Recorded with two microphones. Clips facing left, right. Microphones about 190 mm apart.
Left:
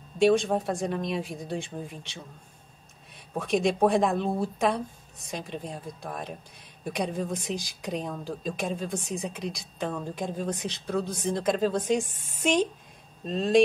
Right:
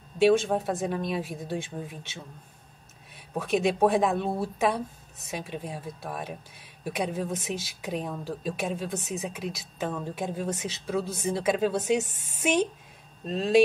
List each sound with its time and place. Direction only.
0.2 s speech: 5° right (ahead or behind)
3.3 s speech: 5° right (ahead or behind)